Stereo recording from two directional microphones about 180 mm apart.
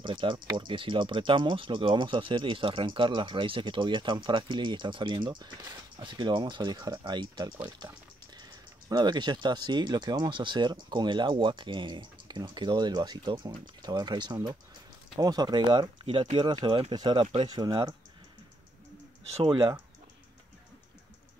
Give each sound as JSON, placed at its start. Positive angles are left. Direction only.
{"t": 0.0, "sound": "speech", "side_deg": -25}
{"t": 19.3, "sound": "speech", "side_deg": -25}